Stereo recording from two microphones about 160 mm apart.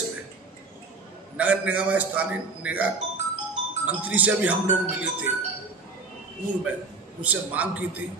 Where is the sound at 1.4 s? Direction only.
10° right (ahead or behind).